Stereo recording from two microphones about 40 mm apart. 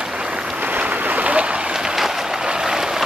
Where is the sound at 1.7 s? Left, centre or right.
Centre.